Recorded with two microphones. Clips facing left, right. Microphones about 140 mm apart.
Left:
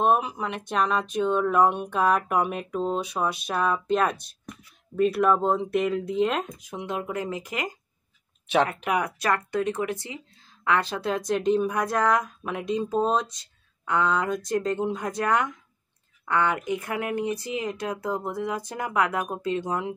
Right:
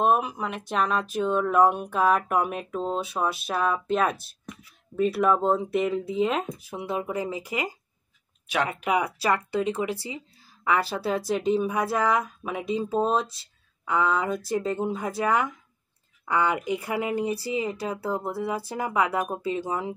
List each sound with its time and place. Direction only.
0.0 s speech: centre (ahead or behind)